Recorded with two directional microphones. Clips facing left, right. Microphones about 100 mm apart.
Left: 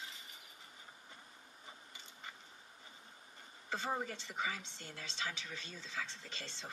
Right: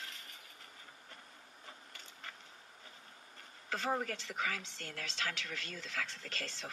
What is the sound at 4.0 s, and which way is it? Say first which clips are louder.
Speech: right 2 dB; 90° right.